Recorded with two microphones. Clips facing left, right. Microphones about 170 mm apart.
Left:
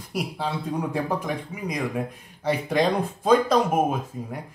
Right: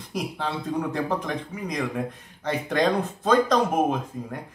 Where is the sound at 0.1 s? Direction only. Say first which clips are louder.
Left 1 dB; 10° left (ahead or behind).